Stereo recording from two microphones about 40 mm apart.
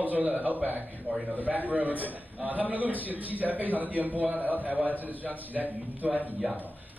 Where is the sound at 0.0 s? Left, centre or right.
Right.